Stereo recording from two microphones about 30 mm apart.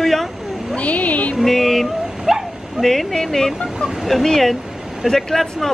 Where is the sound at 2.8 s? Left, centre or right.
Centre.